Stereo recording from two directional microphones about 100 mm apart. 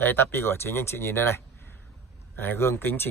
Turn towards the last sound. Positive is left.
turn(degrees=25)  # may be behind; listen again after turning